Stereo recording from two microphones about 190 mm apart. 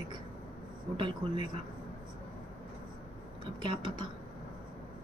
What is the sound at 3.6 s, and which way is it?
Speech, 25° right (ahead or behind).